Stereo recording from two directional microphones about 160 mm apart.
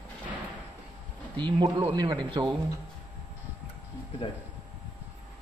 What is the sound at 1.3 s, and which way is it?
Speech, 30° right (ahead or behind).